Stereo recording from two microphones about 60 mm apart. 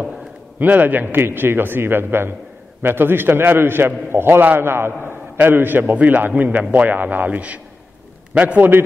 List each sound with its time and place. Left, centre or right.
0.6 s a man's voice: right